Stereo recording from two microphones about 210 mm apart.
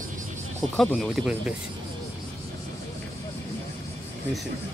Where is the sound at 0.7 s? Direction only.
5° left (ahead or behind).